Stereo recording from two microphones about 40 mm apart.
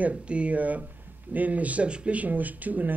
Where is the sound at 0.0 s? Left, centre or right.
Right.